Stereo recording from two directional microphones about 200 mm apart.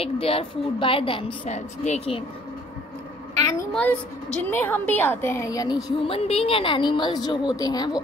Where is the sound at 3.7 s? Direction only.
5° left (ahead or behind).